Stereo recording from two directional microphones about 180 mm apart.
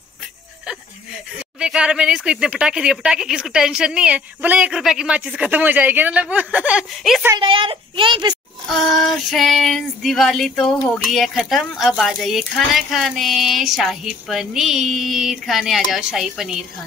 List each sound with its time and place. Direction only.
1.6 s speech: 5° right (ahead or behind)
7.3 s speech: 30° right (ahead or behind)
8.6 s speech: centre (ahead or behind)